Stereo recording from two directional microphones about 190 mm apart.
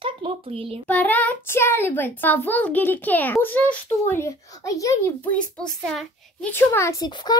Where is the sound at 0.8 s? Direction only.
10° left (ahead or behind).